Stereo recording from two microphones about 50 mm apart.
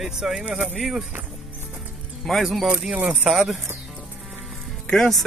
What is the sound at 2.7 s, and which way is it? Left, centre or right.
Speech, centre.